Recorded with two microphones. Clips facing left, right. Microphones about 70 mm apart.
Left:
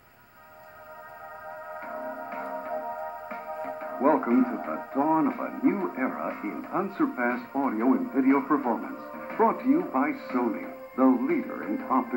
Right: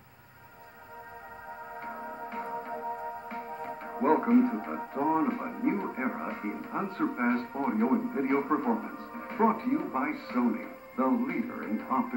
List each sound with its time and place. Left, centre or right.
1.9 s music: centre
5.4 s speech: centre